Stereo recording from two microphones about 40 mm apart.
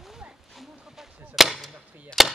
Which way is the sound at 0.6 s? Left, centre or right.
Centre.